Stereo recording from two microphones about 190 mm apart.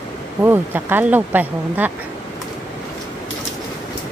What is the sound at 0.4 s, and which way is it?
Speech, 10° right (ahead or behind).